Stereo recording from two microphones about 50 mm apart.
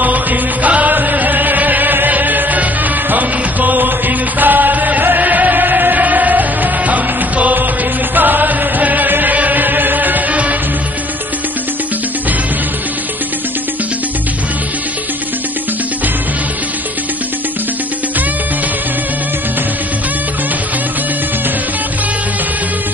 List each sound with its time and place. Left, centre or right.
0.0 s music: right